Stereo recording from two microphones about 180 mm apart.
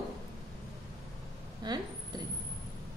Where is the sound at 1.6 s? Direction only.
25° right (ahead or behind).